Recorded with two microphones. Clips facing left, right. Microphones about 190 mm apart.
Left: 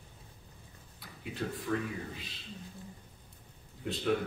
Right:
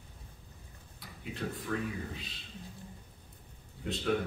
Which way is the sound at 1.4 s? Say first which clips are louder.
Left 1 dB; centre (ahead or behind).